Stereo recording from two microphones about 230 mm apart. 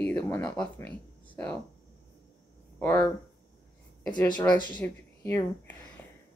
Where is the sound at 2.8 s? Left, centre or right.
Centre.